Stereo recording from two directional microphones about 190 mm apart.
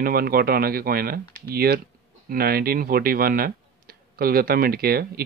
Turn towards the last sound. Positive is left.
turn(degrees=-55)  # may be behind; listen again after turning